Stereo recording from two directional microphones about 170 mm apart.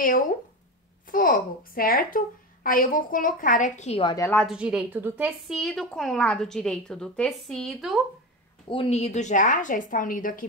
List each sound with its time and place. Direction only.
1.0 s a woman's voice: 55° left (ahead or behind)
4.0 s a woman's voice: 25° left (ahead or behind)
4.5 s a woman's voice: 5° right (ahead or behind)
8.6 s a woman's voice: 35° left (ahead or behind); by 10.4 s 55° left (ahead or behind)